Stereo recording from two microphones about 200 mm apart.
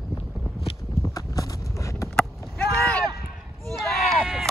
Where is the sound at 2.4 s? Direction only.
5° left (ahead or behind).